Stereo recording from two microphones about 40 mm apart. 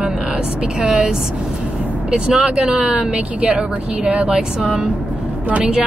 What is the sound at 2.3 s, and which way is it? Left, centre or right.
A woman's voice, right.